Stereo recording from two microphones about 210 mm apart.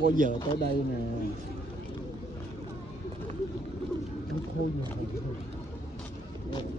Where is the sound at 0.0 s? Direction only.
40° right (ahead or behind).